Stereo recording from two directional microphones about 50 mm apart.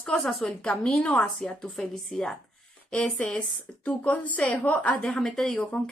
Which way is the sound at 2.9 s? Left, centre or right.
Left.